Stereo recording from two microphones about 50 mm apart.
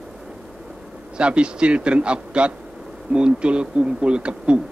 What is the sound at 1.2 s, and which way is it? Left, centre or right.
A man's voice, right.